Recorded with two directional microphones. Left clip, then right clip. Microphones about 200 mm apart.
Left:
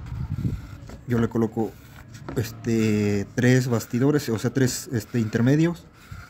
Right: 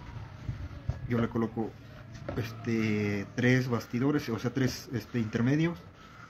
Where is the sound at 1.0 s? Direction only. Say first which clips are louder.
Left 7 dB; 65° left (ahead or behind).